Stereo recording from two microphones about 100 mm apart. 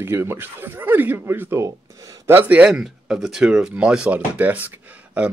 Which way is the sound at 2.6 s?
5° right (ahead or behind).